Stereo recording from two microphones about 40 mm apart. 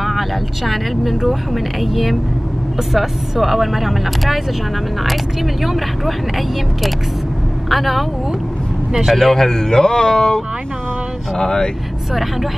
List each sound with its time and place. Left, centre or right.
0.0 s speech: centre
9.1 s speech: centre
12.1 s speech: centre